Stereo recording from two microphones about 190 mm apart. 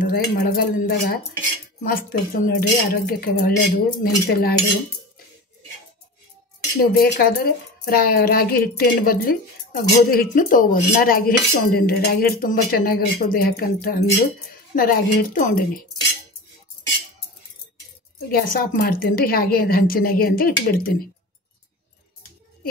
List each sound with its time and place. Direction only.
0.0 s speech: 50° left (ahead or behind)
6.8 s speech: 50° left (ahead or behind)
18.3 s speech: 50° left (ahead or behind)